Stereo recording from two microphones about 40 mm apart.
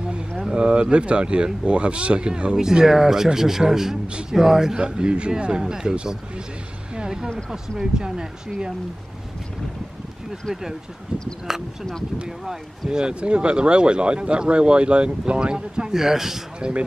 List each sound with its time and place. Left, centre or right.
0.5 s speech: right
2.5 s speech: centre
7.0 s a sound: centre
7.8 s speech: centre
11.5 s speech: centre
13.0 s speech: right; by 16.4 s centre
16.5 s speech: right